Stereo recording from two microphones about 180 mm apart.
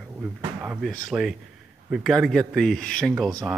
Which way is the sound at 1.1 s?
5° right (ahead or behind).